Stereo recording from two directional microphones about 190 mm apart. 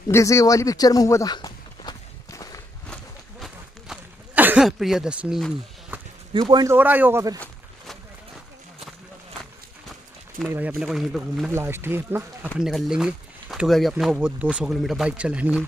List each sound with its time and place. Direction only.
0.1 s a sound: 15° left (ahead or behind)
2.9 s a sound: centre (ahead or behind)
6.3 s speech: 20° right (ahead or behind)
7.3 s walk: centre (ahead or behind)
10.5 s speech: 5° right (ahead or behind)
11.5 s speech: 10° right (ahead or behind)
12.5 s speech: centre (ahead or behind)